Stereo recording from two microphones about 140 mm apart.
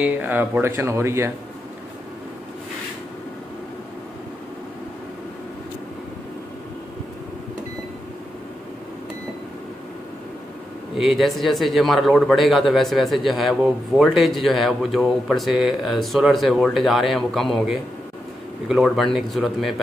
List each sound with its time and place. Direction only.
0.0 s speech: 10° right (ahead or behind)
11.0 s a man's voice: centre (ahead or behind)